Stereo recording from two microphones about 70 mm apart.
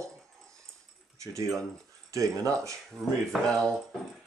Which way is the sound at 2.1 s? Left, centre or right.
Right.